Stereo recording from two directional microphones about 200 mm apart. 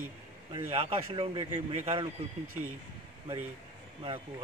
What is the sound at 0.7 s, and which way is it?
Speech, 30° right (ahead or behind).